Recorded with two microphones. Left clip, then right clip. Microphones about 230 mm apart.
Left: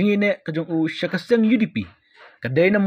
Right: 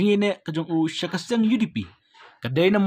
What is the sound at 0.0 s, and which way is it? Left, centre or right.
Speech, centre.